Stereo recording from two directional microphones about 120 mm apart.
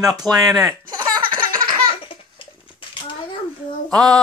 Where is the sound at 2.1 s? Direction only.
45° left (ahead or behind).